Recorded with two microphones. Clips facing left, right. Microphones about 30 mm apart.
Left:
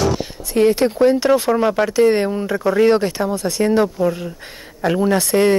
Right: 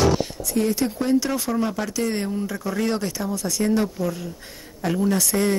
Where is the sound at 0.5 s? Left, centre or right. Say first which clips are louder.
Left 8 dB; left.